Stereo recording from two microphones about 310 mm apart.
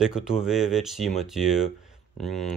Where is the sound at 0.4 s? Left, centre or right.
Centre.